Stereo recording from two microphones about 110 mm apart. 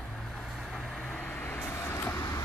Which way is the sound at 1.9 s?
30° left (ahead or behind).